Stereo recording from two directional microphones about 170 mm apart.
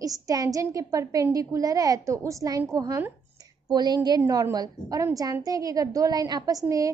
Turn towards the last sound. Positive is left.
turn(degrees=-20)  # may be behind; listen again after turning